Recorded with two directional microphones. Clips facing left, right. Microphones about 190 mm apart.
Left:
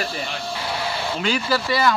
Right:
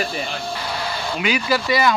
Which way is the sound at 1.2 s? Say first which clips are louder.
Right 2 dB; 15° right (ahead or behind).